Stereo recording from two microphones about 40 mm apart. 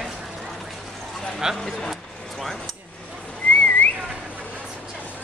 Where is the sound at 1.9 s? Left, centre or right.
Centre.